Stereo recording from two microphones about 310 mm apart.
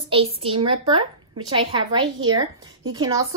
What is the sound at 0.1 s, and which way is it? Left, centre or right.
A woman's voice, centre.